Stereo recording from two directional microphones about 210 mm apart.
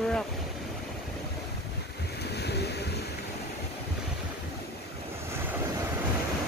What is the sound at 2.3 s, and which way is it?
Waves, 50° left (ahead or behind).